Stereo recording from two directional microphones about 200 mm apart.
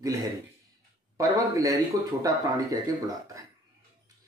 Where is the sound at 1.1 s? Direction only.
15° right (ahead or behind).